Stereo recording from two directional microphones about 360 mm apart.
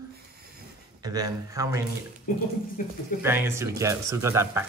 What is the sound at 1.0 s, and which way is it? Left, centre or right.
Speech, centre.